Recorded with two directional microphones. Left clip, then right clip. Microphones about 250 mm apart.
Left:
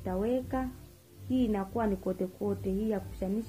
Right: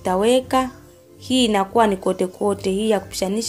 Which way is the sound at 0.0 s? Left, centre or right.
Right.